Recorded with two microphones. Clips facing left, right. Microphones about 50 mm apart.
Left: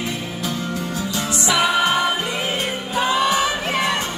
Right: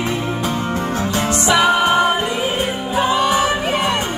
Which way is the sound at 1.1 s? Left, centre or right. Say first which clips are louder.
Right 5 dB; right.